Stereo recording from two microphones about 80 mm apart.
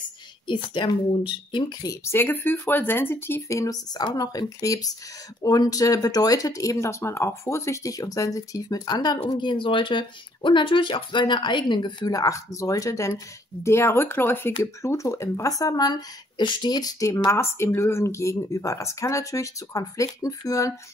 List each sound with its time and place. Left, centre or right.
0.5 s speech: left
2.0 s speech: left
12.1 s speech: left
13.7 s speech: left
14.6 s speech: left
17.0 s speech: left